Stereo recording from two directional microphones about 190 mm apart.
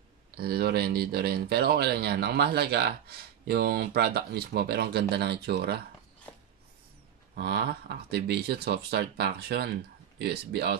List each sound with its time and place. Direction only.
0.4 s speech: 55° right (ahead or behind)
7.3 s speech: 60° right (ahead or behind)